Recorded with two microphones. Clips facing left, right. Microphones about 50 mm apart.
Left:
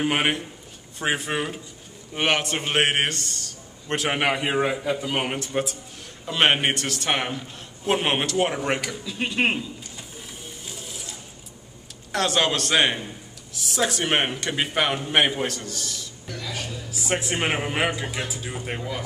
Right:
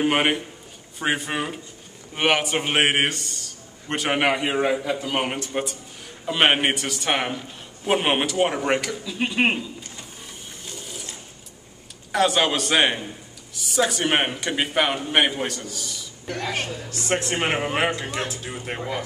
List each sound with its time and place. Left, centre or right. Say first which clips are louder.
0.0 s a man's voice: right 2 dB; centre
10.7 s ratchet: right 3 dB; centre
12.1 s a man's voice: right 2 dB; centre
16.3 s speech: right 6 dB; right
16.9 s a man's voice: right 1 dB; centre